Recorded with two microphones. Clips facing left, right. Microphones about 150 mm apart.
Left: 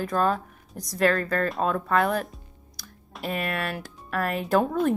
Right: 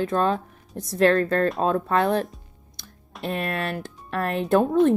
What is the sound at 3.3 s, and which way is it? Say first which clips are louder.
Speech: right 2 dB; 25° right (ahead or behind).